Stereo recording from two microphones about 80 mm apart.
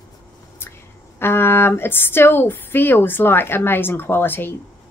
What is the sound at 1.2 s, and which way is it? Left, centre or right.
Speech, left.